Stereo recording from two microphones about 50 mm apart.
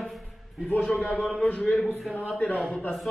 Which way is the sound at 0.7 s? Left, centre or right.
Left.